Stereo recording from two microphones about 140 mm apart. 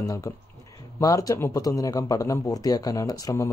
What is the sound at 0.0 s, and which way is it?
A man's voice, 25° left (ahead or behind).